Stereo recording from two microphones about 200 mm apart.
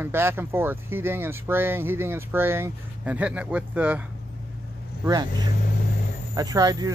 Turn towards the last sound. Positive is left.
turn(degrees=-20)  # may be behind; listen again after turning